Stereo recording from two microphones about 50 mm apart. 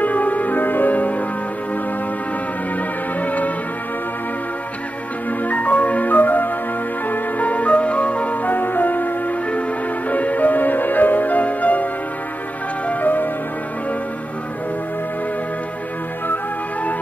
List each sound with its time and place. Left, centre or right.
0.0 s music: left
3.2 s music: left
5.4 s music: left
8.5 s music: left